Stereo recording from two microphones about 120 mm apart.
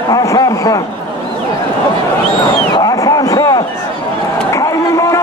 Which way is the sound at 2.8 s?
30° left (ahead or behind).